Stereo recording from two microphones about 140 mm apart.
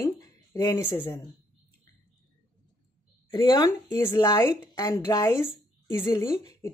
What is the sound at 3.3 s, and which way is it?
A woman's voice, 30° left (ahead or behind).